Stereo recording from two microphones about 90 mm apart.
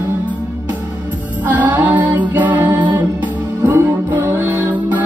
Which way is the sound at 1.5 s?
20° right (ahead or behind).